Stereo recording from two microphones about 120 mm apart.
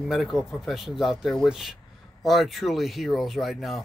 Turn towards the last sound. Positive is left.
turn(degrees=0)  # may be behind; listen again after turning